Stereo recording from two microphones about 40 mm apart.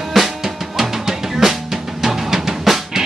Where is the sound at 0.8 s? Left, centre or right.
Centre.